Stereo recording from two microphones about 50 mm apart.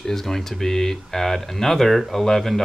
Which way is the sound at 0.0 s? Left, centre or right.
Centre.